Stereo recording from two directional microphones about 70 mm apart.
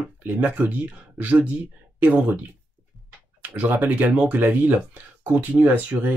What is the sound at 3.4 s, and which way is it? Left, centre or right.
Speech, right.